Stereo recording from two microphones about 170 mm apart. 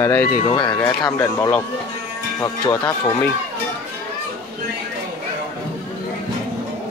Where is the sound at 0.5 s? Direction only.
25° left (ahead or behind).